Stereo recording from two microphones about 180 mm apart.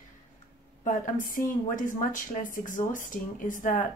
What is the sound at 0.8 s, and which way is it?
Speech, 45° left (ahead or behind).